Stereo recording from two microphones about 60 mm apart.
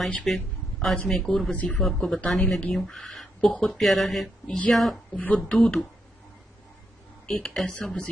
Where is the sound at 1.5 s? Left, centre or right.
Left.